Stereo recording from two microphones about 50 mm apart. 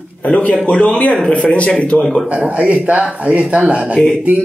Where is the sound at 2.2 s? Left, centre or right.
Right.